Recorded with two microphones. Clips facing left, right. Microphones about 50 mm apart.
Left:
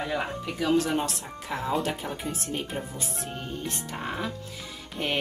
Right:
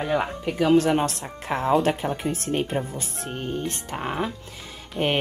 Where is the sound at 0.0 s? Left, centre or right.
Right.